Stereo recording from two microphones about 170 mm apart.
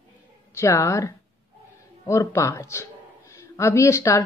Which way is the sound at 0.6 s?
15° left (ahead or behind).